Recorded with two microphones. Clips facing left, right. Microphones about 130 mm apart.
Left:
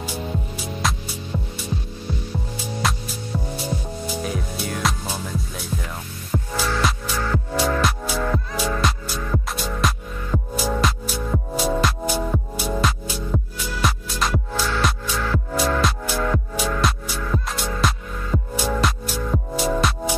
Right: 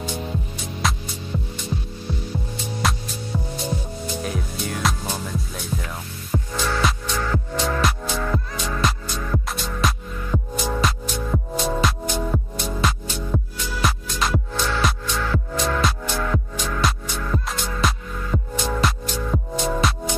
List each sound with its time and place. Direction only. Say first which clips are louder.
0.8 s music: right 1 dB; centre (ahead or behind)
2.5 s music: even; centre (ahead or behind)
4.1 s music: left 1 dB; centre (ahead or behind)